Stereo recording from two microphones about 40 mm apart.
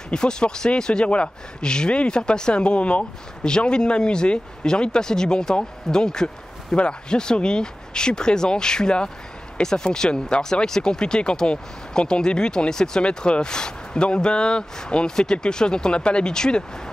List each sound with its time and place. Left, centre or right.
0.1 s speech: left